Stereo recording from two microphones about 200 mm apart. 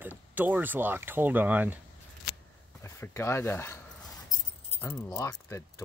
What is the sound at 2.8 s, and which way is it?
Speech, 15° left (ahead or behind).